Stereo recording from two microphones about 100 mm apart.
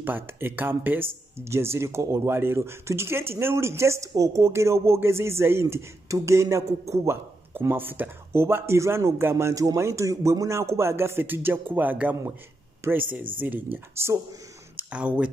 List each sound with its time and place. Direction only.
0.0 s speech: 20° right (ahead or behind)
14.8 s speech: 15° right (ahead or behind)